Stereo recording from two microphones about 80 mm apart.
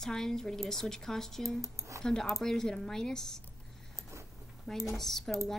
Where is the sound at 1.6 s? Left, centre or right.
Right.